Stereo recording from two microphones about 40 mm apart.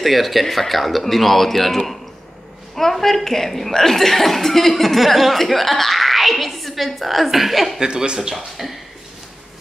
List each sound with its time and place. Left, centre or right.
0.0 s speech: centre
7.8 s speech: right
8.2 s speech: centre